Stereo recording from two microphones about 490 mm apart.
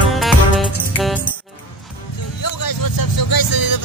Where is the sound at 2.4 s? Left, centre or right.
Left.